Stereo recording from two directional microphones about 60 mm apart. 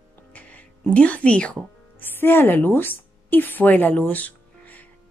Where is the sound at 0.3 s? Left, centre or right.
Left.